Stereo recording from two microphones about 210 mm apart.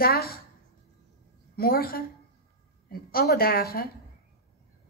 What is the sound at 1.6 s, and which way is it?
A man's voice, 45° left (ahead or behind).